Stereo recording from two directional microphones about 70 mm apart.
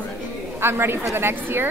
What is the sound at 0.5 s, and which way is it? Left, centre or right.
A woman's voice, right.